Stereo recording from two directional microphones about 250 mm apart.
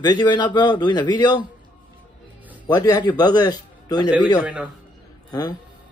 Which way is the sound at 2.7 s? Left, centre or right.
Centre.